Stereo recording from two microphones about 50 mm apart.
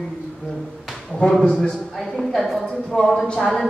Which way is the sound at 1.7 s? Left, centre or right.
Centre.